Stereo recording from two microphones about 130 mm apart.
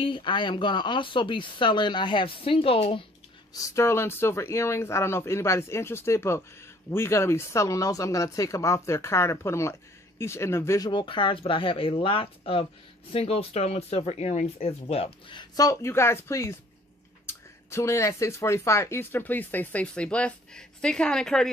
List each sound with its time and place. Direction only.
0.0 s speech: 40° left (ahead or behind)
3.5 s speech: 25° left (ahead or behind)
10.9 s speech: 40° left (ahead or behind)
15.5 s speech: 25° left (ahead or behind); by 21.5 s 5° left (ahead or behind)